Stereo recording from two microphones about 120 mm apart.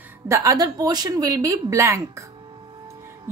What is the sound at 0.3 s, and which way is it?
A woman's voice, 30° right (ahead or behind).